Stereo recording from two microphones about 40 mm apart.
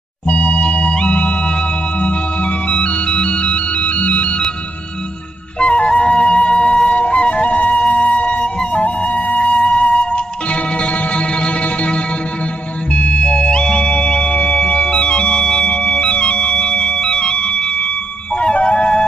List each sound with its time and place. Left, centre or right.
0.3 s music: left
5.6 s flute: left
7.0 s music: left